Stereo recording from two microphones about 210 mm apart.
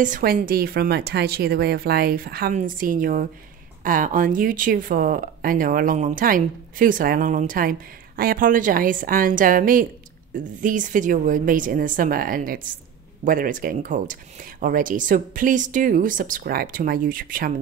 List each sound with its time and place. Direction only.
0.0 s speech: 40° right (ahead or behind)